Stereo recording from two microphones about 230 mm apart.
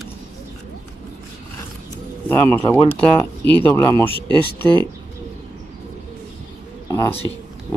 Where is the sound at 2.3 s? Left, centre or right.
Centre.